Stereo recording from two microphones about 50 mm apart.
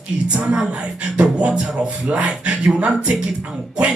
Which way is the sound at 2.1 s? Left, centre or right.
Right.